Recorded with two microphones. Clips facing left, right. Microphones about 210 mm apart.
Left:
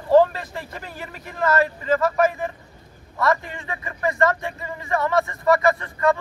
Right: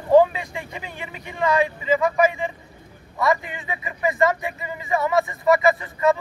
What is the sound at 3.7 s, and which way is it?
Speech, 15° right (ahead or behind).